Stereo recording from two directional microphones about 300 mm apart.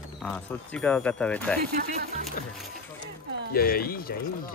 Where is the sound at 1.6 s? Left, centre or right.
Right.